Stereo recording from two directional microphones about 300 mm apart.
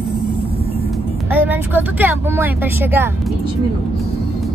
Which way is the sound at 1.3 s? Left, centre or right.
Centre.